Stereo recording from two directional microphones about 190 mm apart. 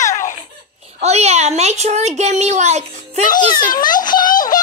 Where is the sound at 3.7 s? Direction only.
45° left (ahead or behind).